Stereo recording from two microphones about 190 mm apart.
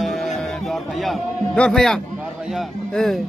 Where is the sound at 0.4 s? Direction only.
Centre (ahead or behind).